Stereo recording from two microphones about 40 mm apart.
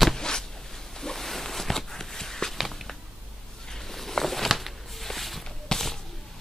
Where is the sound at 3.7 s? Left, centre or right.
Centre.